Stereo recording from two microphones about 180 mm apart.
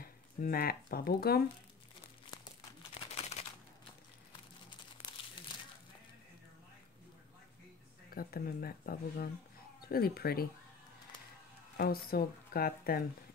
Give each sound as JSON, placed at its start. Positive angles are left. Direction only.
{"t": 0.0, "sound": "speech", "side_deg": 55}
{"t": 2.9, "sound": "a sound", "side_deg": 35}
{"t": 8.1, "sound": "speech", "side_deg": 55}
{"t": 11.7, "sound": "speech", "side_deg": 55}